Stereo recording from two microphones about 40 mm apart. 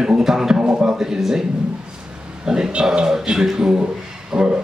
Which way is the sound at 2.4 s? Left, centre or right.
Centre.